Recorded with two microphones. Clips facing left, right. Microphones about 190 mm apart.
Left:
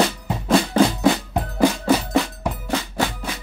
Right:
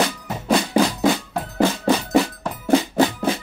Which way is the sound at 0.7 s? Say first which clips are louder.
Left 1 dB; 10° right (ahead or behind).